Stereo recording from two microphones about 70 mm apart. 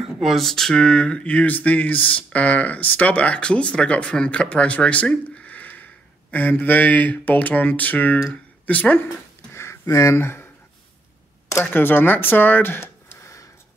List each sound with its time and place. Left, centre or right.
0.2 s speech: centre; by 9.0 s left
9.0 s a sound: left
9.8 s speech: left
10.1 s speech: left
11.7 s speech: left